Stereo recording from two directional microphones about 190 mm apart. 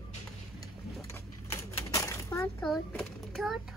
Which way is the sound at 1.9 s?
15° left (ahead or behind).